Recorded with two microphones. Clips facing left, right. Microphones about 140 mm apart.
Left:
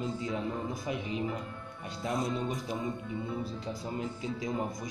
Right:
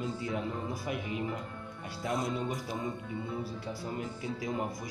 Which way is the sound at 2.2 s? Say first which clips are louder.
Left 1 dB; 20° left (ahead or behind).